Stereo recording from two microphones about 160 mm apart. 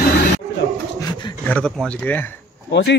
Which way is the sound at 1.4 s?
5° left (ahead or behind).